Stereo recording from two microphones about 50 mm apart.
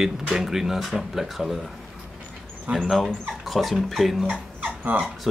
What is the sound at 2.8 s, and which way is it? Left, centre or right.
Speech, centre.